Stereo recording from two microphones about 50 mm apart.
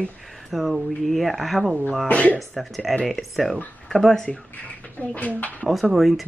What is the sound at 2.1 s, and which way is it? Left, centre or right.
Speech, left.